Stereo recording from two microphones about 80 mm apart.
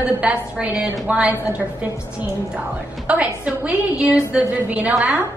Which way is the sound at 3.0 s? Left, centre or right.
Centre.